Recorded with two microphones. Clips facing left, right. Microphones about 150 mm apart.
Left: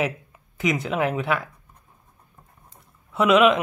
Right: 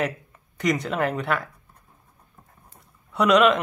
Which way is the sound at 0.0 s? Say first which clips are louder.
Left 1 dB; 5° left (ahead or behind).